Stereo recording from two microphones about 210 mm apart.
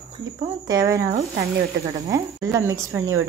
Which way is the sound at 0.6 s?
15° right (ahead or behind).